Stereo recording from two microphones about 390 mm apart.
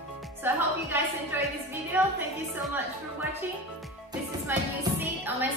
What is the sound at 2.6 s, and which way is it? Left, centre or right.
A woman's voice, centre.